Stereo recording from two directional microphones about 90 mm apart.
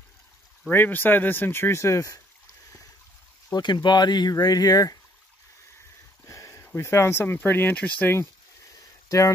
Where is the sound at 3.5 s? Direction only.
55° left (ahead or behind).